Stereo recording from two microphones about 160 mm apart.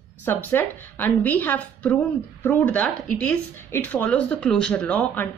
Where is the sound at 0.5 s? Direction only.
10° left (ahead or behind).